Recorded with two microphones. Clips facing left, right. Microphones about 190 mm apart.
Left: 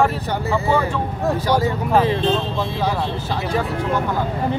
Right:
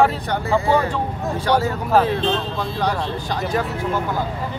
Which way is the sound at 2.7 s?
5° left (ahead or behind).